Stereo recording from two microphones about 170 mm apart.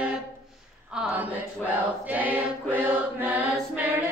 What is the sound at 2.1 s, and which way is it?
Mantra, 10° right (ahead or behind).